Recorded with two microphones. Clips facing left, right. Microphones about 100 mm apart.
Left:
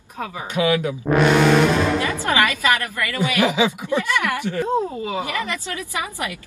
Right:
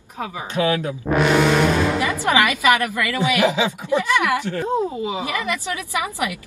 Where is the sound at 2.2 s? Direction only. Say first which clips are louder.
Right 4 dB; 15° right (ahead or behind).